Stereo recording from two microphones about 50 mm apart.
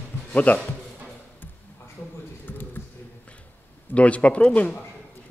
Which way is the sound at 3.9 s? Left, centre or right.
Left.